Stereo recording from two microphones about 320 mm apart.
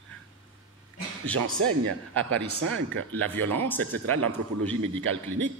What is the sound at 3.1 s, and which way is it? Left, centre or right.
Speech, centre.